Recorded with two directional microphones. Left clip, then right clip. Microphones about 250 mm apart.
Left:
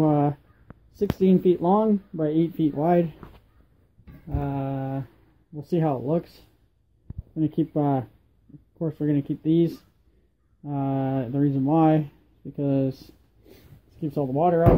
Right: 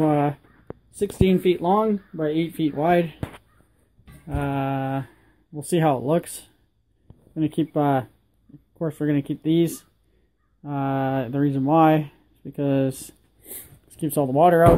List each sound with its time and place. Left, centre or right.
0.0 s a sound: centre
0.9 s speech: centre
4.3 s mantra: centre
7.3 s speech: centre
8.7 s mantra: centre
9.4 s speech: centre; by 14.6 s right